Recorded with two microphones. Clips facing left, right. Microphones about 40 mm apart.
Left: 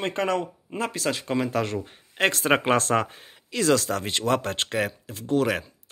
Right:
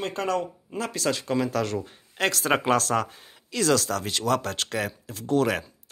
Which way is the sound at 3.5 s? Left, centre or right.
Centre.